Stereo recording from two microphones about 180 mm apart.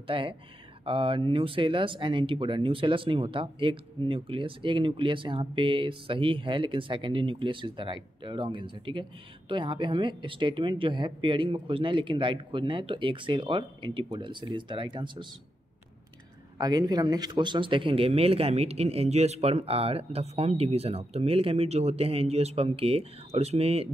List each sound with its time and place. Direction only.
0.0 s speech: 30° right (ahead or behind)
16.5 s speech: 20° right (ahead or behind)